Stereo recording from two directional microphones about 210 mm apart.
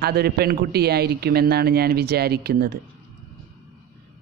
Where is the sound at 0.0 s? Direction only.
50° right (ahead or behind).